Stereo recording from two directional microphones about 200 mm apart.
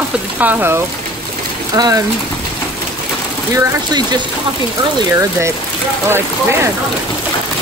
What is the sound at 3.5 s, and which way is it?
Speech, 20° right (ahead or behind).